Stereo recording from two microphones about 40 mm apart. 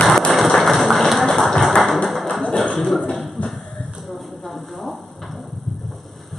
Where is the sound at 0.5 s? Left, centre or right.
Centre.